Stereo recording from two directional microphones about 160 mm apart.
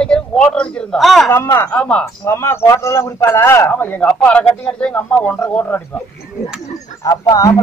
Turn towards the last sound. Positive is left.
turn(degrees=20)  # may be behind; listen again after turning